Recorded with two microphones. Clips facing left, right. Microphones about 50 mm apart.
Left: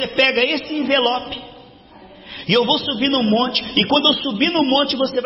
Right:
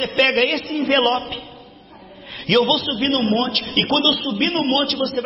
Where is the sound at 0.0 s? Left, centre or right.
Centre.